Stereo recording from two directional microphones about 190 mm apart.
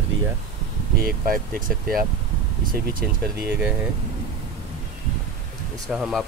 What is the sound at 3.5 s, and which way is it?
Speech, 10° right (ahead or behind).